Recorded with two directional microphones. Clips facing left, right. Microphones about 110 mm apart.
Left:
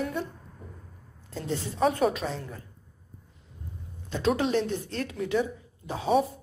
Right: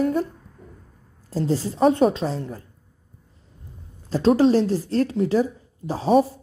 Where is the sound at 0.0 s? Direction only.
40° right (ahead or behind).